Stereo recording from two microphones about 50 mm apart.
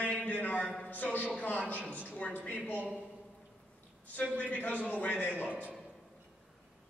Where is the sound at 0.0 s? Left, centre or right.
Left.